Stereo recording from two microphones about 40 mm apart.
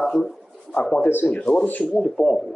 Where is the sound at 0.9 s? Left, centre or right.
Left.